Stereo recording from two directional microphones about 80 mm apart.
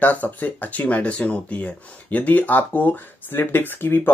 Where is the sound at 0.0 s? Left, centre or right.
Left.